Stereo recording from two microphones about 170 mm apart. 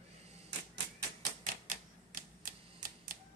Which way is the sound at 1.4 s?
50° right (ahead or behind).